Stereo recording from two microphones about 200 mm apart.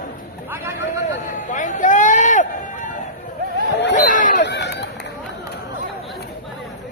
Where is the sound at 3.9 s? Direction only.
40° left (ahead or behind).